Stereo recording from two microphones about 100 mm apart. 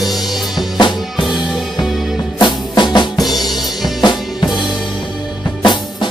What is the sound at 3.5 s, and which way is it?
Drum kit, centre (ahead or behind).